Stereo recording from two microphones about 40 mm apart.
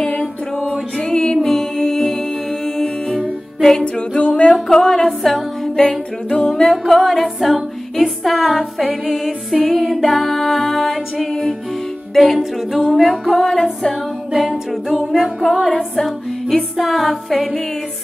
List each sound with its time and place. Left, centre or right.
0.0 s music: left
1.4 s music: centre
3.8 s music: left; by 5.4 s centre
5.8 s music: left
6.5 s music: centre
9.0 s a capella: centre
9.6 s music: centre
13.3 s music: centre
14.3 s a capella: centre
15.6 s music: centre
16.7 s music: centre